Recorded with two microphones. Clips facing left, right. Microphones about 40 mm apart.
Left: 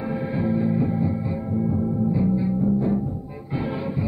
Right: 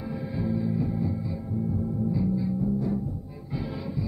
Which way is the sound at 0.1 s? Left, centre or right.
Left.